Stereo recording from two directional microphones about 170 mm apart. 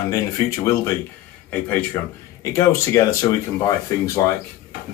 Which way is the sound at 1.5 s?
10° left (ahead or behind).